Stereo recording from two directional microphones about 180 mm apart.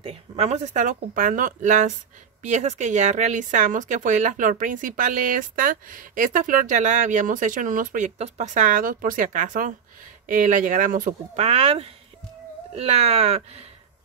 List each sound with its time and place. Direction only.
0.0 s speech: 35° right (ahead or behind)